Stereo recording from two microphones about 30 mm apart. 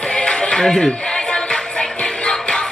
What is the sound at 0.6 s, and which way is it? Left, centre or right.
Speech, centre.